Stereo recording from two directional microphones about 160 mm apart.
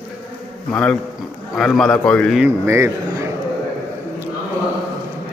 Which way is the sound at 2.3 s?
15° right (ahead or behind).